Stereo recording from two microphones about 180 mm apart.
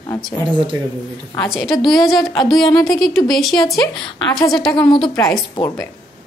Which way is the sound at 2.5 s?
20° left (ahead or behind).